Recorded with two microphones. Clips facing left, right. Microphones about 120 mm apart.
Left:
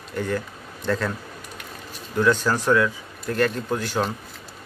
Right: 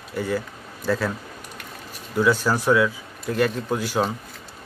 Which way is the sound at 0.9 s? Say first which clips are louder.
Right 1 dB; 5° right (ahead or behind).